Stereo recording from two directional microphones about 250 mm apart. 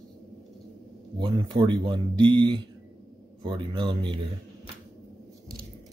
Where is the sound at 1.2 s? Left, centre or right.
Centre.